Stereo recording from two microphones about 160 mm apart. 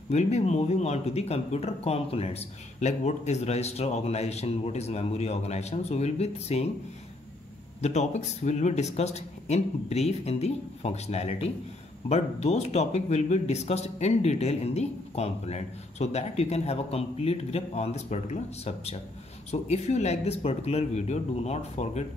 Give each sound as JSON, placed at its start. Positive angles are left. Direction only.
{"t": 0.1, "sound": "a man's voice", "side_deg": 45}
{"t": 7.8, "sound": "a man's voice", "side_deg": 45}